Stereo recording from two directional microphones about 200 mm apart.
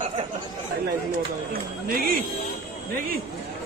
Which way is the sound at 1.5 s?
45° right (ahead or behind).